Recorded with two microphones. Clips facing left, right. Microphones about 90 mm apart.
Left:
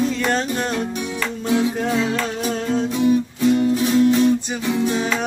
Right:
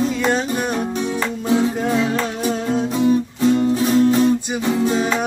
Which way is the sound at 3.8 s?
35° right (ahead or behind).